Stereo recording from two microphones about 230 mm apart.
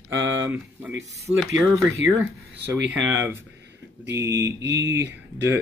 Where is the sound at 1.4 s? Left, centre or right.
Centre.